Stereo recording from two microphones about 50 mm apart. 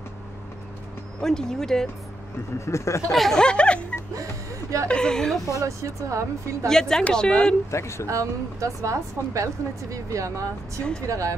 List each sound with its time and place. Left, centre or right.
1.2 s speech: centre
2.6 s speech: left
3.1 s speech: centre
3.3 s speech: centre
4.2 s speech: right
4.8 s speech: centre
5.8 s speech: right
6.7 s speech: centre
7.7 s speech: left
8.1 s speech: right